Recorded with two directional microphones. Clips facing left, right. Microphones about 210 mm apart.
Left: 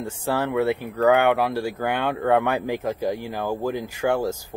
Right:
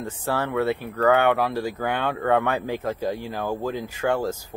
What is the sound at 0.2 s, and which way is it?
Speech, 15° left (ahead or behind).